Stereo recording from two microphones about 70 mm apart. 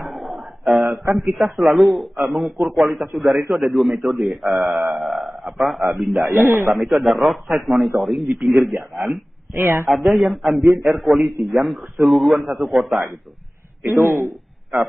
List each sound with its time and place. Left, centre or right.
0.0 s a sound: centre
1.1 s a man's voice: centre
4.6 s mantra: right
4.9 s a man's voice: centre
6.4 s speech: right
6.7 s a man's voice: centre
9.5 s speech: right
9.8 s a man's voice: centre
13.8 s speech: right